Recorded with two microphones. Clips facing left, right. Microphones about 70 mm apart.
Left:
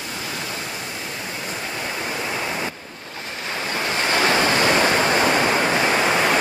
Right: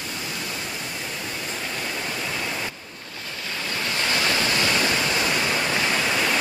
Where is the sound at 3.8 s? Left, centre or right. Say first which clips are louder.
Left 5 dB; left.